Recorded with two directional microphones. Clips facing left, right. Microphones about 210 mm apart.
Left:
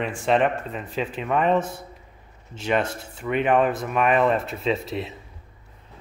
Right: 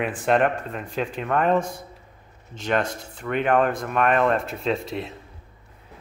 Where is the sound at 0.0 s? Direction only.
Centre (ahead or behind).